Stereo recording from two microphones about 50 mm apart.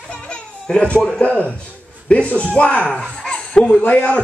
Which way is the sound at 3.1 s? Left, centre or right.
Centre.